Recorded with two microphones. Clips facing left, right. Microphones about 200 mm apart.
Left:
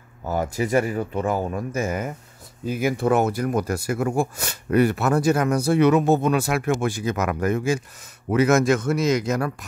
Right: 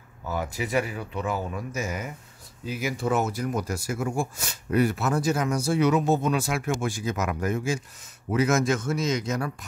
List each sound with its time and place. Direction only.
0.3 s speech: 45° left (ahead or behind); by 9.7 s 65° left (ahead or behind)